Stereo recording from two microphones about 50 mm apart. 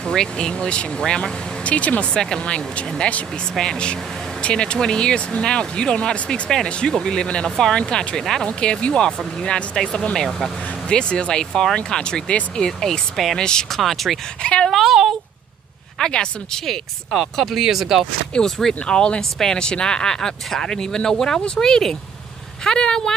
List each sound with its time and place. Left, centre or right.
0.0 s speech: centre
1.6 s speech: left
2.1 s speech: centre
6.9 s speech: centre
8.2 s speech: centre
8.5 s speech: centre
13.1 s speech: centre
13.4 s speech: centre
13.7 s speech: centre
14.4 s speech: centre
14.7 s a sound: centre
16.0 s speech: centre
17.1 s speech: centre
18.3 s speech: centre